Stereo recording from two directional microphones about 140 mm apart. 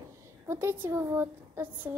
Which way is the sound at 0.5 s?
15° right (ahead or behind).